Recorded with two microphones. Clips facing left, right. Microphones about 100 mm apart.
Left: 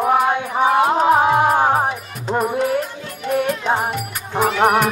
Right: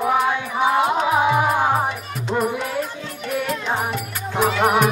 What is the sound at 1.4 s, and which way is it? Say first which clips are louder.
Music: left 3 dB; 50° left (ahead or behind).